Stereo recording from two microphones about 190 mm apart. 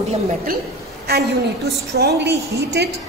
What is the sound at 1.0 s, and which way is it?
A woman's voice, 55° right (ahead or behind).